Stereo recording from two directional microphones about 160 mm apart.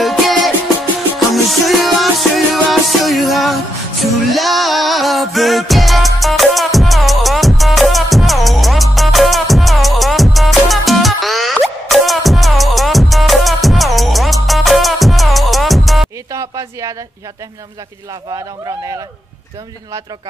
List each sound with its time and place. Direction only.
0.0 s music: centre (ahead or behind)
16.3 s music: 20° right (ahead or behind)